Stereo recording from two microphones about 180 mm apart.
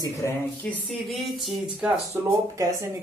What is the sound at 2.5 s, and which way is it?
Speech, 15° right (ahead or behind).